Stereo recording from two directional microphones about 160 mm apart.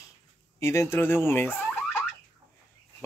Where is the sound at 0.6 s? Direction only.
15° left (ahead or behind).